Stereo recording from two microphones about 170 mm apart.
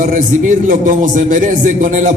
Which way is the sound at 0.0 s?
50° right (ahead or behind).